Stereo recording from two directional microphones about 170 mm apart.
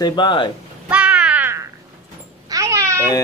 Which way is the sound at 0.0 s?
25° left (ahead or behind).